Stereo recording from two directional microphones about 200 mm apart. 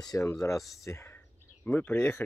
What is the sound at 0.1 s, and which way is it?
Speech, 15° left (ahead or behind).